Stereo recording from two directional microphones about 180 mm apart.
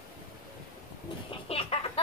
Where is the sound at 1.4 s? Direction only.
30° left (ahead or behind).